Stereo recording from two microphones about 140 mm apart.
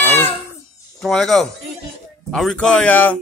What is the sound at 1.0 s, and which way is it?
Speech, centre (ahead or behind).